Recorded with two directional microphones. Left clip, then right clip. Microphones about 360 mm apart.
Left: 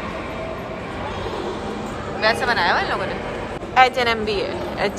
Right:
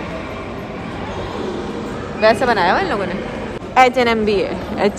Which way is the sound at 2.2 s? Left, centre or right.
Centre.